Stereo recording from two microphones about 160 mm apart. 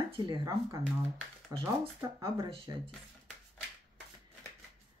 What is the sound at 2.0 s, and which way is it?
Speech, 20° right (ahead or behind).